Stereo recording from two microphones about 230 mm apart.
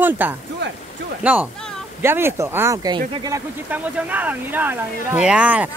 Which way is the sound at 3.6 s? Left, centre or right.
Centre.